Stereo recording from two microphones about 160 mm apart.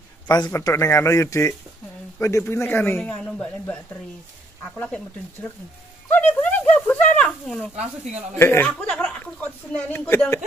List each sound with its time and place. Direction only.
0.3 s speech: 20° left (ahead or behind)
6.0 s a sound: 10° left (ahead or behind)
7.7 s speech: 45° right (ahead or behind)
8.4 s speech: 15° left (ahead or behind)